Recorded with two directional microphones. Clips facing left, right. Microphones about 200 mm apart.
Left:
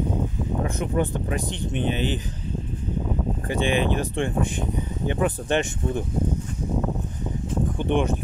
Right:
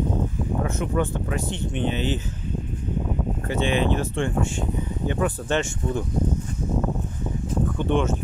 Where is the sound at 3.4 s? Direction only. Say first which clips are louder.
Even; 15° left (ahead or behind).